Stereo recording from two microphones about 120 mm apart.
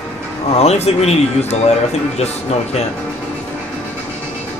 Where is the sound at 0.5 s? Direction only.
65° left (ahead or behind).